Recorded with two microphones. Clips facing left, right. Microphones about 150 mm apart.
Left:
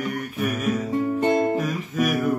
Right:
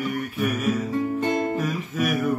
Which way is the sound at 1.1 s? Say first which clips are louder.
Left 6 dB; 15° left (ahead or behind).